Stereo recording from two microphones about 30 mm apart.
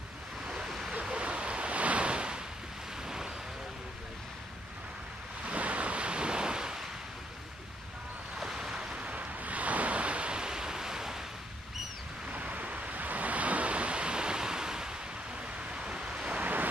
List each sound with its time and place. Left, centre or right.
1.1 s waves: right
2.0 s waves: right
5.5 s waves: right
8.4 s waves: centre
8.7 s a sound: right
9.0 s waves: right
10.3 s waves: right
12.3 s waves: right
15.7 s a sound: right